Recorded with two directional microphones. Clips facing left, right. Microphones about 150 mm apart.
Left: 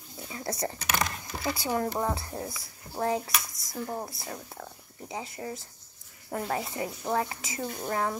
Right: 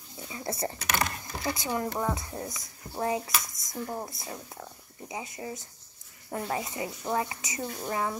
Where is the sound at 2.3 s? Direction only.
5° left (ahead or behind).